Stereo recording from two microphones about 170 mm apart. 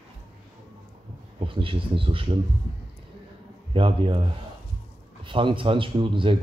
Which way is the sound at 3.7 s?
30° right (ahead or behind).